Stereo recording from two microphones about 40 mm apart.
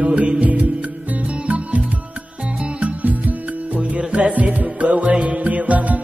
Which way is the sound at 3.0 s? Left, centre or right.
Right.